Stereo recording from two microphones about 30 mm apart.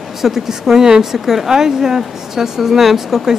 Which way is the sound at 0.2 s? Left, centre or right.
Centre.